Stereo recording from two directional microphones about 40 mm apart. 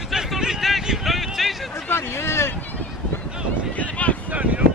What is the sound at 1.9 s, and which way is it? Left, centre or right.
Speech, left.